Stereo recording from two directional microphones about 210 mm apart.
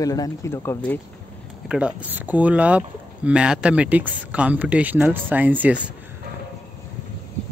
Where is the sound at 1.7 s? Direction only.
5° right (ahead or behind).